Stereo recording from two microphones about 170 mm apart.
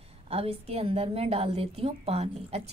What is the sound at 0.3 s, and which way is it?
A woman's voice, 35° right (ahead or behind).